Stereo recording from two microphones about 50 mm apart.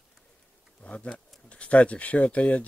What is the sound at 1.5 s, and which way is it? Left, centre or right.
Speech, left.